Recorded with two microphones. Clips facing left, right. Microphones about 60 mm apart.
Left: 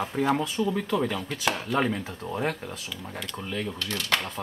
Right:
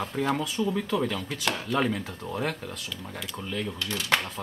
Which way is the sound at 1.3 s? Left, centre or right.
Centre.